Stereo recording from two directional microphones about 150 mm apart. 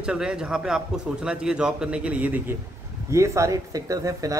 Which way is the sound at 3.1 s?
20° right (ahead or behind).